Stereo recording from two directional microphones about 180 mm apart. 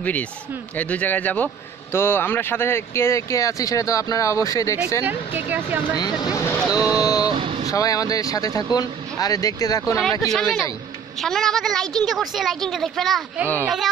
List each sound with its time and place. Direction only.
0.0 s speech: 10° left (ahead or behind)
5.9 s speech: 20° left (ahead or behind)
6.6 s a woman's voice: 5° right (ahead or behind)
7.1 s a sound: 20° left (ahead or behind)
7.3 s vehicle: 35° right (ahead or behind)
7.7 s speech: 20° left (ahead or behind)
10.2 s a woman's voice: centre (ahead or behind)